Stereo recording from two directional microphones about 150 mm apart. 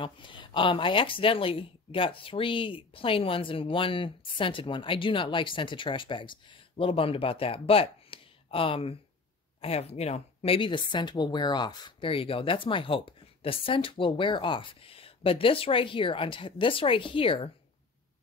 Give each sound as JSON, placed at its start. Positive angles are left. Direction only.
{"t": 0.0, "sound": "speech", "side_deg": 35}